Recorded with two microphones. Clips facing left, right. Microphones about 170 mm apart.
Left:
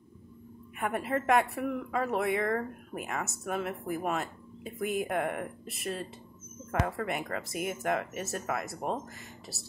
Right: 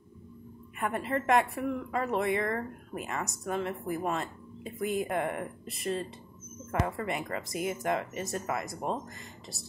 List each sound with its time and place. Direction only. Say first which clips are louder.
0.7 s speech: even; 5° left (ahead or behind)